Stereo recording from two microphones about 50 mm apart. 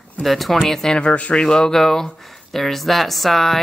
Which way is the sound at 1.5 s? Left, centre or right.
Centre.